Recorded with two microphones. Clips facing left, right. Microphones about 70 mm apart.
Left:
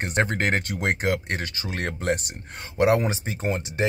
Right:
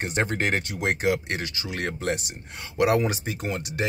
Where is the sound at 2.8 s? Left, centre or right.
Left.